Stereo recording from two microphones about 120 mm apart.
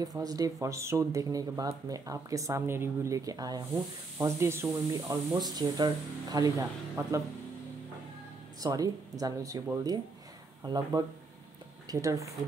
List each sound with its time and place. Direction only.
0.0 s speech: 30° right (ahead or behind)
8.5 s speech: 30° right (ahead or behind)
10.6 s speech: 35° right (ahead or behind)